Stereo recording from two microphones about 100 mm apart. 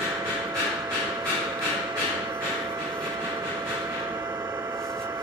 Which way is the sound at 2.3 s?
30° right (ahead or behind).